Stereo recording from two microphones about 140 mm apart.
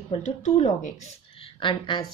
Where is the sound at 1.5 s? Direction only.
35° left (ahead or behind).